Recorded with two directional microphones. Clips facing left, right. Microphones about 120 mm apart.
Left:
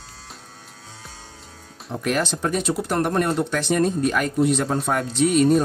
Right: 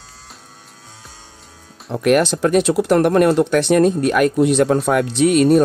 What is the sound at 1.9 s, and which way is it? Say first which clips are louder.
Speech: right 9 dB; 70° right (ahead or behind).